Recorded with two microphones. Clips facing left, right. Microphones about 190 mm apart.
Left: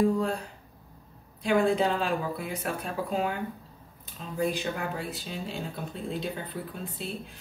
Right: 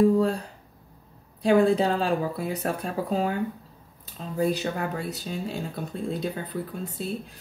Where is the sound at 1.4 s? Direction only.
35° right (ahead or behind).